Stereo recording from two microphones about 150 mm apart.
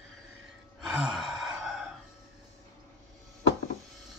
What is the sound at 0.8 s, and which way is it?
Sigh, centre (ahead or behind).